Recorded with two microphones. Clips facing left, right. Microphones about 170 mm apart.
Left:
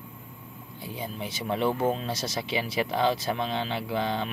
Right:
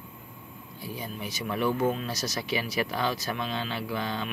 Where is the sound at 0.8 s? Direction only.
25° left (ahead or behind).